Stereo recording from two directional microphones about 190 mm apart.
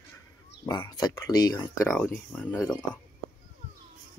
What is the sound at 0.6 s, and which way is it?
Speech, 20° left (ahead or behind).